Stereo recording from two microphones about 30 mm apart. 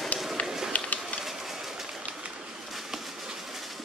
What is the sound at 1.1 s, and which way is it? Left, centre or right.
Bird, centre.